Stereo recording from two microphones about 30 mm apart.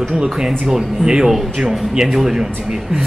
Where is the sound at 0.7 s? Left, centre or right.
Centre.